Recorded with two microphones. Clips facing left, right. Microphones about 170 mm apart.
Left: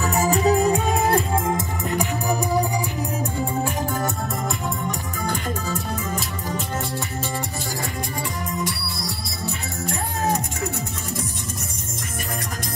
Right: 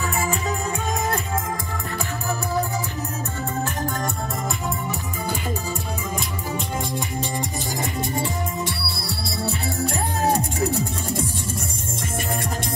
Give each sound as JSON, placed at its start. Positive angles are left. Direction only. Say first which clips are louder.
{"t": 0.0, "sound": "music", "louder": "left 6 dB", "side_deg": 40}
{"t": 1.9, "sound": "music", "louder": "left 5 dB", "side_deg": 15}
{"t": 3.3, "sound": "music", "louder": "left 1 dB", "side_deg": 10}
{"t": 4.8, "sound": "music", "louder": "left 1 dB", "side_deg": -10}
{"t": 8.6, "sound": "music", "louder": "even", "side_deg": -30}